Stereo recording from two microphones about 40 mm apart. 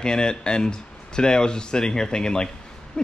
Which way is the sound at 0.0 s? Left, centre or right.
Centre.